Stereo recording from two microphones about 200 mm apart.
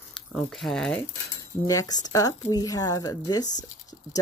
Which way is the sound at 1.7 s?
20° left (ahead or behind).